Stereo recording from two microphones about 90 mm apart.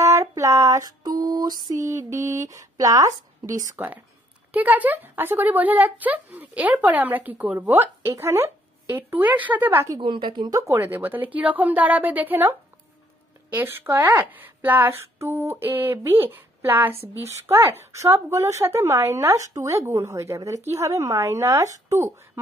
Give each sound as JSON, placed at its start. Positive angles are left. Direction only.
{"t": 0.0, "sound": "a sound", "side_deg": -35}
{"t": 0.4, "sound": "female singing", "side_deg": -35}
{"t": 3.7, "sound": "speech", "side_deg": -20}
{"t": 9.9, "sound": "a woman's voice", "side_deg": -65}
{"t": 10.5, "sound": "a woman's voice", "side_deg": -35}
{"t": 10.8, "sound": "a woman's voice", "side_deg": -20}